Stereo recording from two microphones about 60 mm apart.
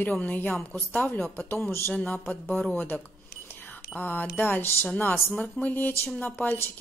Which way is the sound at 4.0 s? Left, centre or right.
Left.